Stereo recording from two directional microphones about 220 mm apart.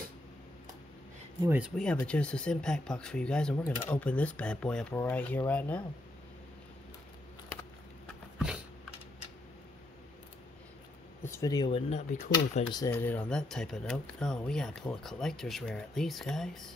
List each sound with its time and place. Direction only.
1.4 s speech: 10° right (ahead or behind)
1.8 s speech: 5° left (ahead or behind)
11.2 s speech: 15° left (ahead or behind); by 12.6 s 30° left (ahead or behind)
12.7 s speech: 10° left (ahead or behind)